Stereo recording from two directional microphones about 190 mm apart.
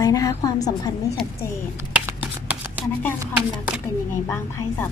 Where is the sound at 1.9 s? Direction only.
10° right (ahead or behind).